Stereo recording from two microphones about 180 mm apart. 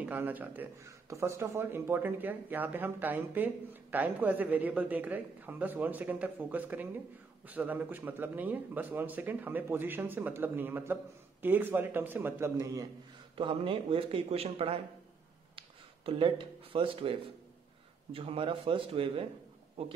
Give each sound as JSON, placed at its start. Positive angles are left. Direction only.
{"t": 0.0, "sound": "speech", "side_deg": -10}
{"t": 13.4, "sound": "a man's voice", "side_deg": -30}
{"t": 16.1, "sound": "speech", "side_deg": -30}